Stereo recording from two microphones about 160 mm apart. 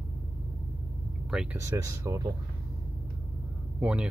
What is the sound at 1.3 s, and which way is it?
Speech, 5° right (ahead or behind).